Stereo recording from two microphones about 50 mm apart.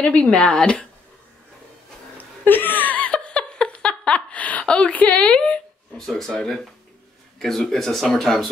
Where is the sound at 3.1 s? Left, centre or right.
Centre.